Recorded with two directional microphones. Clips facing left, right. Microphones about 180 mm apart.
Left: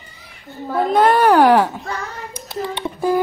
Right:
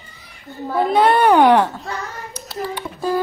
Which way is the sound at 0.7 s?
Centre (ahead or behind).